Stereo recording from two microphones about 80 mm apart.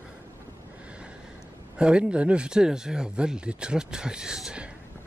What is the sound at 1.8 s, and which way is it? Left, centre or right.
Speech, centre.